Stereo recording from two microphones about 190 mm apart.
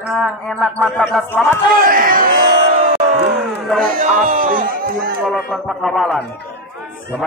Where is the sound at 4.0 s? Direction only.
45° right (ahead or behind).